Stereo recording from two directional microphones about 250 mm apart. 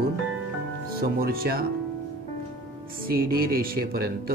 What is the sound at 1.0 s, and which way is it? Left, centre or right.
Speech, right.